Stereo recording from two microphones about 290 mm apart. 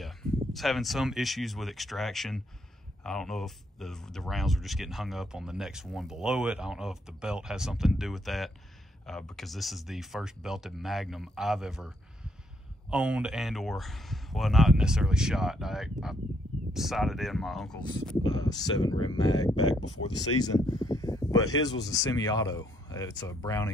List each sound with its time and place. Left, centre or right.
0.0 s speech: centre
12.9 s speech: centre
18.2 s speech: centre
19.8 s speech: left
20.3 s speech: centre